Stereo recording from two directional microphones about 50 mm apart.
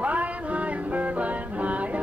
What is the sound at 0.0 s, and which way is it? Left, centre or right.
Music, right.